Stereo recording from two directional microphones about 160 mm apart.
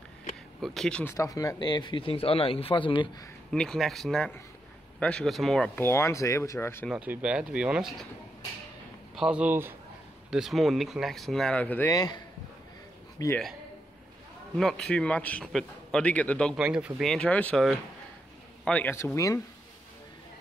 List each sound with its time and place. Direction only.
0.6 s speech: centre (ahead or behind)
1.1 s speech: 20° left (ahead or behind)
3.5 s speech: 5° left (ahead or behind)
5.8 s a man's voice: 15° left (ahead or behind)
6.9 s speech: 10° right (ahead or behind)
9.1 s speech: 5° right (ahead or behind)
10.3 s speech: centre (ahead or behind)
11.9 s speech: 25° left (ahead or behind)
13.2 s speech: 20° left (ahead or behind)
14.6 s a man's voice: 5° left (ahead or behind)
16.5 s a man's voice: 5° right (ahead or behind); by 19.4 s 20° left (ahead or behind)